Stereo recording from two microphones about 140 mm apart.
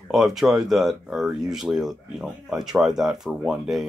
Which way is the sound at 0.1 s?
Centre (ahead or behind).